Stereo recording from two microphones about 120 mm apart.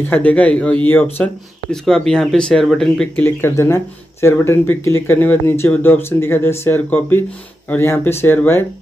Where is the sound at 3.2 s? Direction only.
20° left (ahead or behind).